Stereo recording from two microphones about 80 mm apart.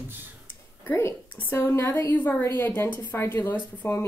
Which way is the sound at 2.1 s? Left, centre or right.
Left.